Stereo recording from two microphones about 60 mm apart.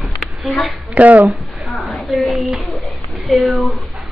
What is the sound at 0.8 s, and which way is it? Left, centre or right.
Speech, right.